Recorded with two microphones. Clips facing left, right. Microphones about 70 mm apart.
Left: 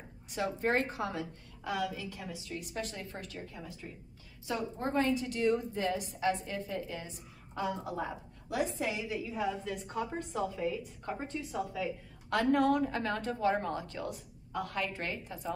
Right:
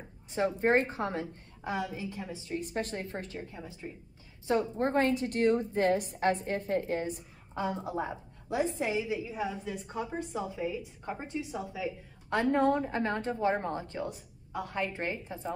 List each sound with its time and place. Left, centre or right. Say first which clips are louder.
0.3 s a woman's voice: right 5 dB; right
4.5 s a woman's voice: right 6 dB; right
7.5 s a woman's voice: right 2 dB; right